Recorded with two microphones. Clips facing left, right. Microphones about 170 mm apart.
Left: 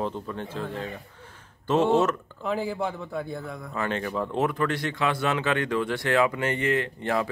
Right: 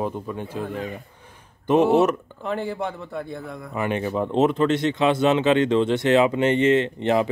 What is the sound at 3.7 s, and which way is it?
Speech, 15° right (ahead or behind).